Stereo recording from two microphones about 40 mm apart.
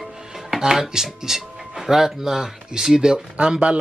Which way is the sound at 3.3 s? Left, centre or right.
Right.